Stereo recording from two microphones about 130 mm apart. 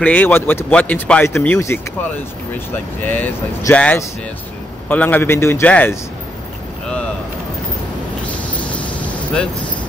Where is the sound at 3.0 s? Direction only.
15° left (ahead or behind).